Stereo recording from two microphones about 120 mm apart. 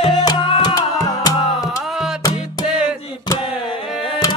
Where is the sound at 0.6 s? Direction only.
35° left (ahead or behind).